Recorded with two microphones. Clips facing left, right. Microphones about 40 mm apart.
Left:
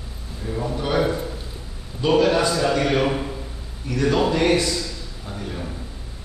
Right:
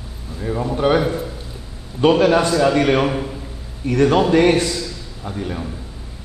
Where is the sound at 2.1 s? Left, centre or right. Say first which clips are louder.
Right 4 dB; right.